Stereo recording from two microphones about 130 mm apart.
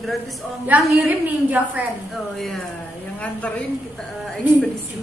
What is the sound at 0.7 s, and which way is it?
A woman's voice, 15° right (ahead or behind).